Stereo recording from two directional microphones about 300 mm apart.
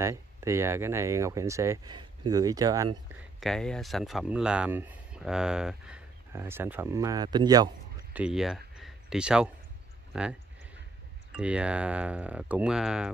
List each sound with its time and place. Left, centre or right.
0.0 s speech: centre
3.3 s speech: centre
11.3 s speech: centre